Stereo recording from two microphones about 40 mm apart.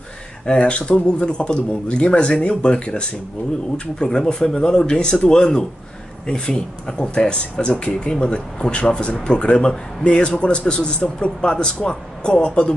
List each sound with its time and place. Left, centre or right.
0.5 s speech: left